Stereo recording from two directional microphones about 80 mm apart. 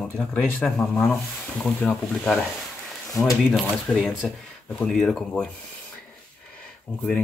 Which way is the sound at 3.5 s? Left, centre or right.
Centre.